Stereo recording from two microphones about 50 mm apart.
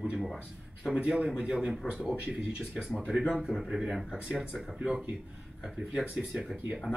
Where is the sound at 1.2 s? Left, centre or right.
Centre.